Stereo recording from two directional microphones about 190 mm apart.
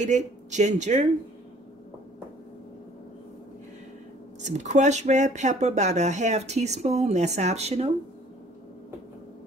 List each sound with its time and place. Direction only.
0.0 s speech: 40° right (ahead or behind)
4.4 s speech: 40° right (ahead or behind)